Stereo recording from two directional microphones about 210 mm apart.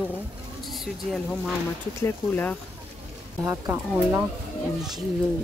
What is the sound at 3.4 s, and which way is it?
Speech, 10° right (ahead or behind).